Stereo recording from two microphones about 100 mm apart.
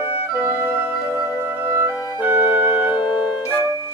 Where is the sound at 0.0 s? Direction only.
20° right (ahead or behind).